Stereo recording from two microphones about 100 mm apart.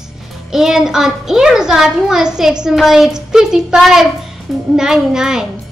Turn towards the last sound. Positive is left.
turn(degrees=-5)  # may be behind; listen again after turning